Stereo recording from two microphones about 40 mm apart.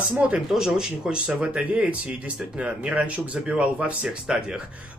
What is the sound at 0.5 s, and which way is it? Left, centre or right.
Speech, centre.